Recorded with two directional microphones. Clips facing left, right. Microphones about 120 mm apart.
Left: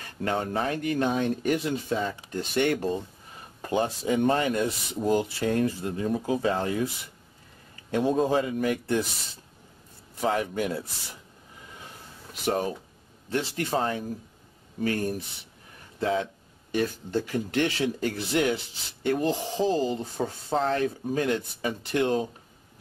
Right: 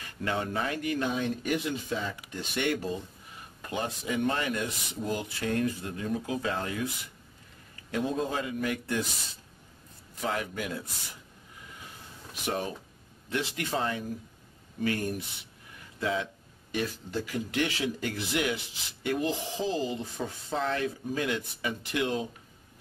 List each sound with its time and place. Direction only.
0.0 s speech: 40° left (ahead or behind)
8.1 s speech: 35° left (ahead or behind)
10.2 s speech: 30° left (ahead or behind)
12.4 s speech: 35° left (ahead or behind)